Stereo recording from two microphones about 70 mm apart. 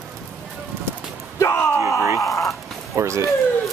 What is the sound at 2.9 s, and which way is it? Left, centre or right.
Speech, right.